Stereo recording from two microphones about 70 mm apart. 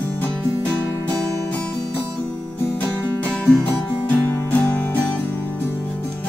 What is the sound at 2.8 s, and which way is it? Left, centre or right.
Music, centre.